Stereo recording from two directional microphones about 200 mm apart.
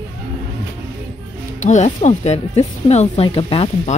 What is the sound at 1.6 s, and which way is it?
Speech, 35° left (ahead or behind).